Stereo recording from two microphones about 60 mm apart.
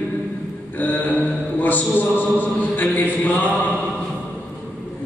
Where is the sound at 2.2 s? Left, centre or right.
Left.